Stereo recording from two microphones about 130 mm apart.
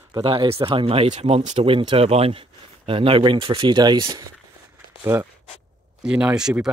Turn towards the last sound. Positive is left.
turn(degrees=-5)  # may be behind; listen again after turning